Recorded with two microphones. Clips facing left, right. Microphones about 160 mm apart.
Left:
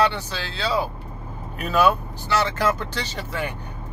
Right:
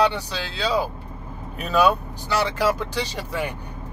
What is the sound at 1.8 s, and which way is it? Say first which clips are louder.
Speech: even; 15° right (ahead or behind).